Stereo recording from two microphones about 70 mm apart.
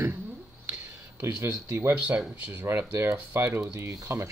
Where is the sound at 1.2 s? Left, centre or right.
Right.